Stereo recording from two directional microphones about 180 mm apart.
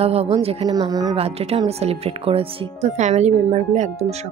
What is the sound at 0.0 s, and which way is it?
Speech, 35° right (ahead or behind).